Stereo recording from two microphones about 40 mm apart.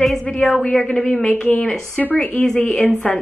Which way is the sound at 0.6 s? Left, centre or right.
Left.